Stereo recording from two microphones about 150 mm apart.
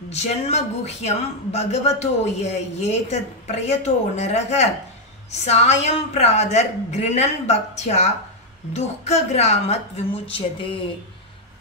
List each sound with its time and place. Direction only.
0.1 s a man's voice: 50° left (ahead or behind)